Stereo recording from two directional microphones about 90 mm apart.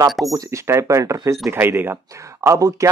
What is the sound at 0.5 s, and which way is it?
Speech, 30° right (ahead or behind).